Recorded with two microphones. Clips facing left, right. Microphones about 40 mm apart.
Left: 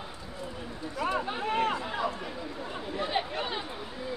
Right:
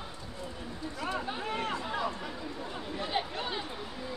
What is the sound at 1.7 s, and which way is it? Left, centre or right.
Chatter, centre.